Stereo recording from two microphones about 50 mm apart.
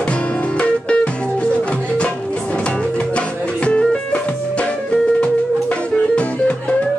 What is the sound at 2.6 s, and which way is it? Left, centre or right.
Music, left.